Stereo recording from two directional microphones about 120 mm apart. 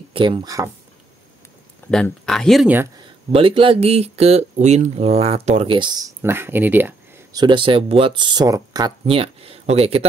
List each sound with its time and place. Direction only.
0.1 s speech: 40° right (ahead or behind)
1.8 s a sound: 15° left (ahead or behind)
2.2 s speech: 5° left (ahead or behind)
3.3 s speech: 50° right (ahead or behind)
5.7 s speech: 40° right (ahead or behind); by 6.9 s 15° right (ahead or behind)
7.3 s speech: 40° right (ahead or behind)
9.0 s speech: 50° right (ahead or behind)